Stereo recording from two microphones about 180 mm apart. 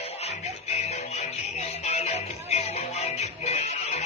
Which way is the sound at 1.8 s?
35° left (ahead or behind).